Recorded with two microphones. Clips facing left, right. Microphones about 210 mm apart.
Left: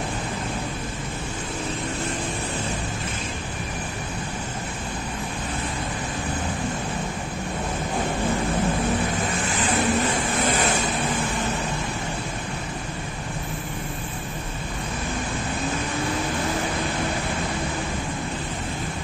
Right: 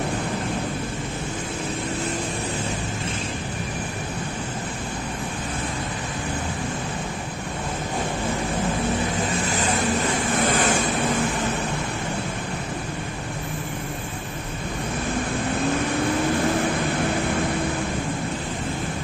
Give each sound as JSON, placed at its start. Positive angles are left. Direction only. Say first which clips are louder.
{"t": 10.4, "sound": "vehicle", "louder": "right 2 dB", "side_deg": -50}